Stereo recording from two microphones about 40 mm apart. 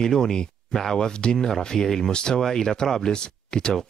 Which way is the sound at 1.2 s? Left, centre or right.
Left.